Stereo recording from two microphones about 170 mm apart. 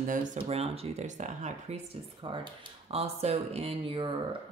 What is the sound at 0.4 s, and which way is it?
Speech, 35° right (ahead or behind).